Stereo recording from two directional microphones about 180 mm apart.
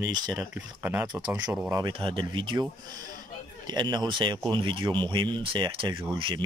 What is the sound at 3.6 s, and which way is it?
Speech, 25° right (ahead or behind).